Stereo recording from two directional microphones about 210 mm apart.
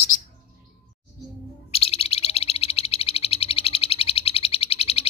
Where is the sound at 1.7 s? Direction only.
30° left (ahead or behind).